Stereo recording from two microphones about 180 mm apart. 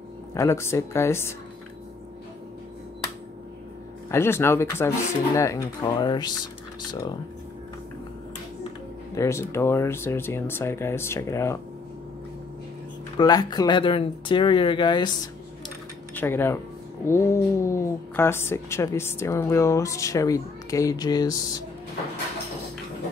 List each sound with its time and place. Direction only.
0.3 s speech: 15° left (ahead or behind)
4.1 s speech: 15° left (ahead or behind)
9.1 s speech: 15° left (ahead or behind)
13.2 s speech: 20° left (ahead or behind)
16.2 s speech: 10° left (ahead or behind)